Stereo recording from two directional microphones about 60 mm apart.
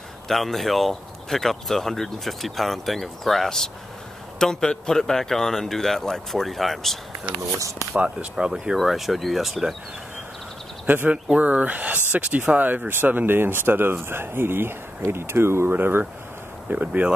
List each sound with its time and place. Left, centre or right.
0.3 s speech: centre
8.0 s speech: centre
11.1 s speech: right
15.7 s speech: right